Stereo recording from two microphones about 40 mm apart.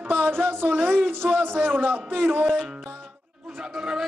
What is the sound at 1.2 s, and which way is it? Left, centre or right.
Music, centre.